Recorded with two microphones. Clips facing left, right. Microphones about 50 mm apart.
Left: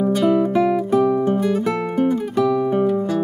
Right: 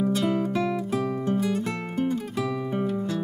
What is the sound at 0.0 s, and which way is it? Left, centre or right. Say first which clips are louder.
Music: left 8 dB; centre.